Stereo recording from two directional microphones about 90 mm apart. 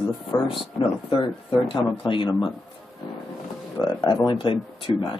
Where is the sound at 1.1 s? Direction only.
80° left.